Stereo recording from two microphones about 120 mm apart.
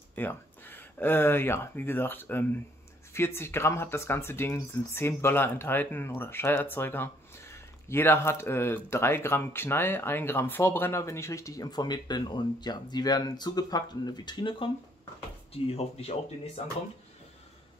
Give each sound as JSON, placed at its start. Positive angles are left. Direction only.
{"t": 0.1, "sound": "speech", "side_deg": 15}
{"t": 15.5, "sound": "speech", "side_deg": 55}